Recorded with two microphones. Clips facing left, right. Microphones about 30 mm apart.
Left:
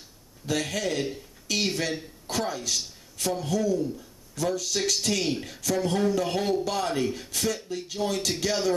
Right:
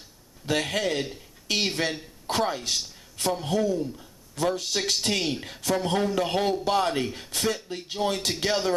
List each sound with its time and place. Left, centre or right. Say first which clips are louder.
0.5 s a man's voice: right 2 dB; right
5.2 s a man's voice: even; right